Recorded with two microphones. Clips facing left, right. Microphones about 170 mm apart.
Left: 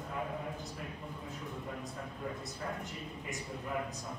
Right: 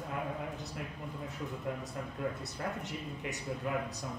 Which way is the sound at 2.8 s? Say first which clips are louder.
Right 3 dB; 75° right (ahead or behind).